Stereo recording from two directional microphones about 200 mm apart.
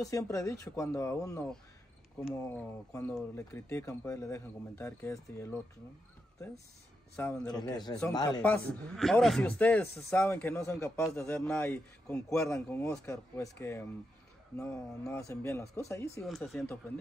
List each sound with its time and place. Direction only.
0.0 s speech: 15° left (ahead or behind)
2.5 s speech: 10° left (ahead or behind)
7.4 s speech: 20° left (ahead or behind)
8.4 s speech: 5° left (ahead or behind)
16.2 s speech: centre (ahead or behind)